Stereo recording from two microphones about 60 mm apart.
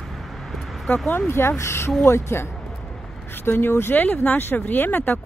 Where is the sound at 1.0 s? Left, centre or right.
Left.